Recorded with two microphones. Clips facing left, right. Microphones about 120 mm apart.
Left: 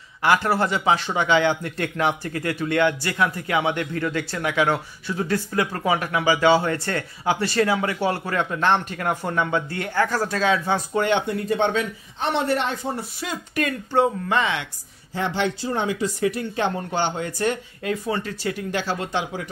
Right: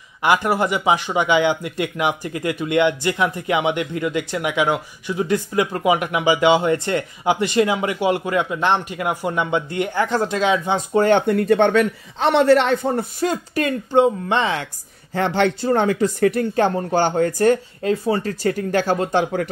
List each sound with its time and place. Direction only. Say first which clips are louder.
0.2 s speech: right 2 dB; 15° right (ahead or behind)
11.0 s speech: right 8 dB; 50° right (ahead or behind)
13.6 s speech: right 4 dB; 25° right (ahead or behind)
14.4 s a woman's voice: right 3 dB; 35° right (ahead or behind)
15.1 s speech: right 5 dB; 60° right (ahead or behind)
17.8 s speech: right 5 dB; 30° right (ahead or behind); by 19.4 s 50° right (ahead or behind)